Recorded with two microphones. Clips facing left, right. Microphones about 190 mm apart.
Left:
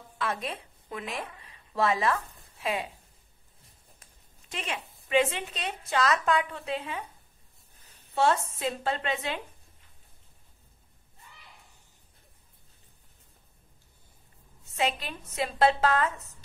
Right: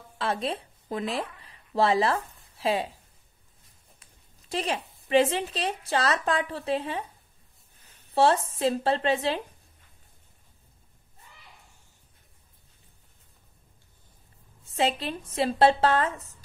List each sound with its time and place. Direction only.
0.2 s a woman's voice: 30° right (ahead or behind)
4.5 s a woman's voice: 35° right (ahead or behind)
8.1 s a woman's voice: 30° right (ahead or behind)
14.7 s a woman's voice: 30° right (ahead or behind)